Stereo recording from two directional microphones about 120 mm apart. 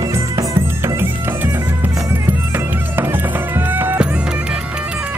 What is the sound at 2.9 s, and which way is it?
Music, 20° right (ahead or behind).